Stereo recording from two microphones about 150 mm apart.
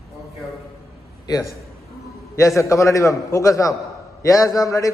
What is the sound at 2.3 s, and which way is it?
A man's voice, 20° left (ahead or behind).